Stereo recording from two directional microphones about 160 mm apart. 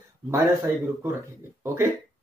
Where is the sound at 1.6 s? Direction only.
15° right (ahead or behind).